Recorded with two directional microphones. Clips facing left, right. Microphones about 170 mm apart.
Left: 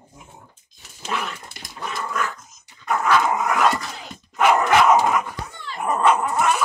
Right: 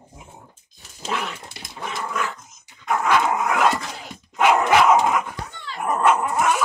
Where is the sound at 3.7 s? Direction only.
5° right (ahead or behind).